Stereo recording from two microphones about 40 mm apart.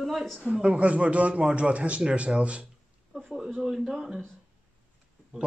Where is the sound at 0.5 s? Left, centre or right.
Right.